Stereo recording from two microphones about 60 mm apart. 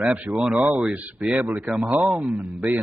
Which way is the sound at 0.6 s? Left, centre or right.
Right.